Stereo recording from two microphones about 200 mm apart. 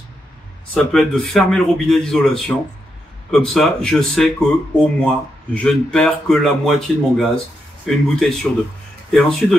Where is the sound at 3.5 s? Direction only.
Centre (ahead or behind).